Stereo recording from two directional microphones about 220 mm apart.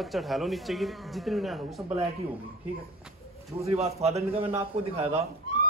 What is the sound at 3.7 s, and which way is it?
A man's voice, 30° right (ahead or behind).